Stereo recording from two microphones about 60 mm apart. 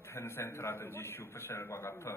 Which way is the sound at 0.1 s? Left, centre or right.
Left.